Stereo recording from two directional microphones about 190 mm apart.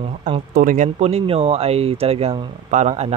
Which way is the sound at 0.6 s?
45° right (ahead or behind).